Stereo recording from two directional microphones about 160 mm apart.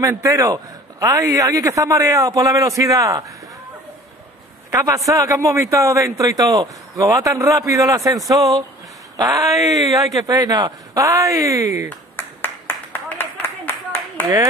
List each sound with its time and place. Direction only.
0.0 s a man's voice: 20° right (ahead or behind)
4.6 s a man's voice: 20° right (ahead or behind)
12.2 s clapping: 15° left (ahead or behind)
13.2 s a sound: 15° left (ahead or behind)